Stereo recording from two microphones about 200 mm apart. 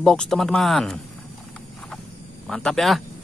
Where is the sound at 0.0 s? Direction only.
5° left (ahead or behind).